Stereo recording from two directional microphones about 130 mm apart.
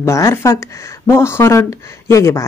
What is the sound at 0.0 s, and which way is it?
Speech, 20° left (ahead or behind).